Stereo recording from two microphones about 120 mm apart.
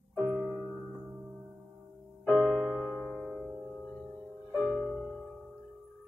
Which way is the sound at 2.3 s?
10° left (ahead or behind).